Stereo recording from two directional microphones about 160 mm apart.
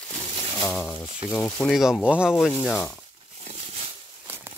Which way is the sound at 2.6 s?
10° left (ahead or behind).